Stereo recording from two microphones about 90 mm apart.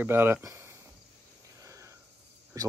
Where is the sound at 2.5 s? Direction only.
40° right (ahead or behind).